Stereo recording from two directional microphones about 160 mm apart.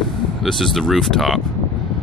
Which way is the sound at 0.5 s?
Centre (ahead or behind).